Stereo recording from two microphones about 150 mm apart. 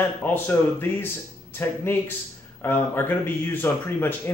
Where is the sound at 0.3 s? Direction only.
15° left (ahead or behind).